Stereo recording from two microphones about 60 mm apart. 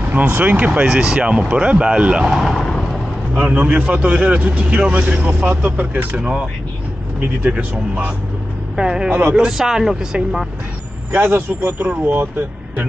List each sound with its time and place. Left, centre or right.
0.0 s speech: right; by 2.4 s centre
2.4 s a sound: centre
3.3 s speech: right
5.7 s speech: right
6.1 s speech: centre
7.5 s speech: centre
11.1 s speech: right